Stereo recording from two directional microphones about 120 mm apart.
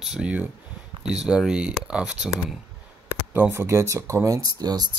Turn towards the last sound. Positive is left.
turn(degrees=-35)  # may be behind; listen again after turning